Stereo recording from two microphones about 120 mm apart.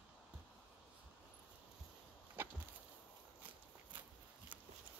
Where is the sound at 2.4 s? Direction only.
20° right (ahead or behind).